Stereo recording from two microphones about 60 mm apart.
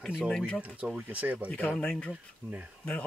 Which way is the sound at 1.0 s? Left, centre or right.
Right.